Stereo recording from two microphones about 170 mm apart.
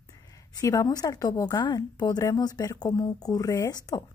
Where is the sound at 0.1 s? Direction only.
20° left (ahead or behind).